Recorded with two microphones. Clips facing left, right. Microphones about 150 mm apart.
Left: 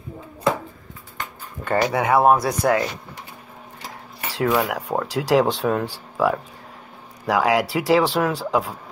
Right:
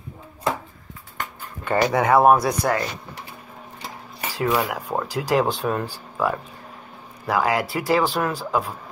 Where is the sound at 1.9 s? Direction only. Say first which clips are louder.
Right 1 dB; 20° left (ahead or behind).